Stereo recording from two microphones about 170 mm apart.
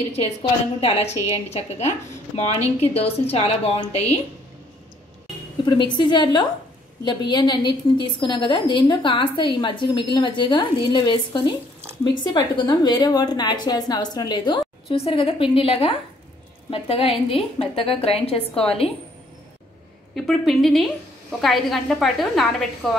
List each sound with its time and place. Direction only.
0.1 s a woman's voice: 35° left (ahead or behind)
5.9 s a woman's voice: 25° left (ahead or behind)
20.2 s a woman's voice: centre (ahead or behind)